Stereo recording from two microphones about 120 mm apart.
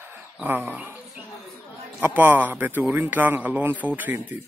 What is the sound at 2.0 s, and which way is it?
Speech, 15° right (ahead or behind).